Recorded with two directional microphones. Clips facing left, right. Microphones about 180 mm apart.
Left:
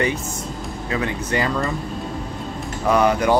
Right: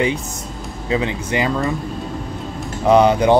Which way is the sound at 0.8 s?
20° right (ahead or behind).